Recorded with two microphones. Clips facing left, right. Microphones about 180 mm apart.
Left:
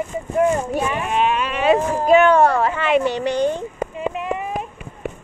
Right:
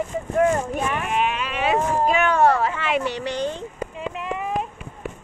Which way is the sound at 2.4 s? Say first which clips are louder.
Left 2 dB; 55° left (ahead or behind).